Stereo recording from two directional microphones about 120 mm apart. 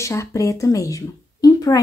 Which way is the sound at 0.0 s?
25° left (ahead or behind).